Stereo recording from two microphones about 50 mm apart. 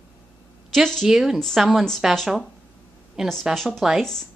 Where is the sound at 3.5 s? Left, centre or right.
Centre.